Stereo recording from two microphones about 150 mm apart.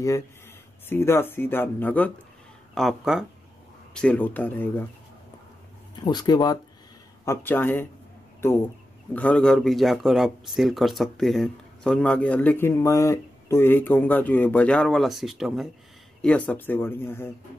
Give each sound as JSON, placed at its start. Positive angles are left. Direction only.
{"t": 0.8, "sound": "speech", "side_deg": 15}
{"t": 2.7, "sound": "speech", "side_deg": 0}
{"t": 5.9, "sound": "speech", "side_deg": 30}
{"t": 7.2, "sound": "speech", "side_deg": 15}
{"t": 9.1, "sound": "speech", "side_deg": 10}
{"t": 16.2, "sound": "speech", "side_deg": 10}